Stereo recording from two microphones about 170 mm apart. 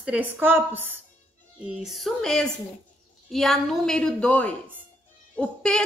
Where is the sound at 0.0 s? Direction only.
10° right (ahead or behind).